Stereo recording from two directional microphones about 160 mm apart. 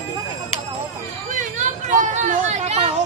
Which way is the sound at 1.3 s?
50° right (ahead or behind).